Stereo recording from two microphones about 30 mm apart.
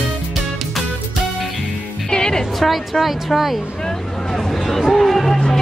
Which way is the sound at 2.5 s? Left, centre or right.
Centre.